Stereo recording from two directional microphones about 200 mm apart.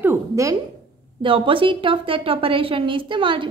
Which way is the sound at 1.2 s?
25° right (ahead or behind).